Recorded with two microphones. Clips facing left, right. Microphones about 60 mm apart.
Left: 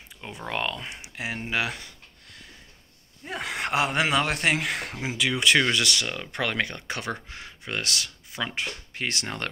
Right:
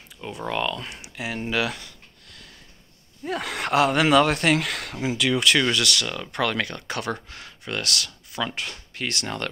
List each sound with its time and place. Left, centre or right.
0.5 s speech: left
0.7 s speech: left
3.3 s speech: centre